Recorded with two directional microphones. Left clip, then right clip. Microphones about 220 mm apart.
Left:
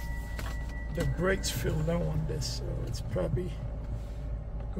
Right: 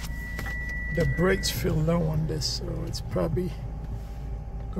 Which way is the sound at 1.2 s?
30° right (ahead or behind).